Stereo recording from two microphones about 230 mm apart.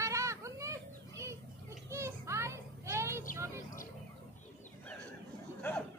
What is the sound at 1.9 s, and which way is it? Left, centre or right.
Children playing, centre.